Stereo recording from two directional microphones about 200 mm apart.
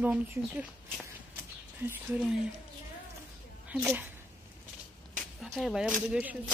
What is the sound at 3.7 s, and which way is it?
Speech, 5° right (ahead or behind).